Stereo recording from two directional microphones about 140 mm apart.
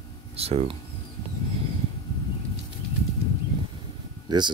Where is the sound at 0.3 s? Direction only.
45° right (ahead or behind).